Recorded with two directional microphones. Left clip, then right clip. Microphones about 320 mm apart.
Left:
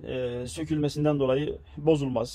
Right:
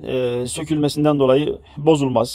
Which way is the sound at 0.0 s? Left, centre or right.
Right.